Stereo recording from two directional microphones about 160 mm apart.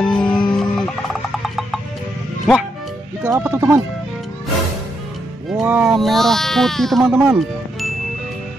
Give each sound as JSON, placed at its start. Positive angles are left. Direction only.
{"t": 0.0, "sound": "music", "side_deg": 5}
{"t": 1.4, "sound": "wood block", "side_deg": 0}
{"t": 2.5, "sound": "speech", "side_deg": 0}
{"t": 3.3, "sound": "speech", "side_deg": -15}
{"t": 5.5, "sound": "speech", "side_deg": -5}
{"t": 7.1, "sound": "speech", "side_deg": -10}